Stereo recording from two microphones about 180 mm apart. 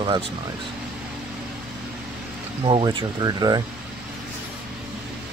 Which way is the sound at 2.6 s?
25° right (ahead or behind).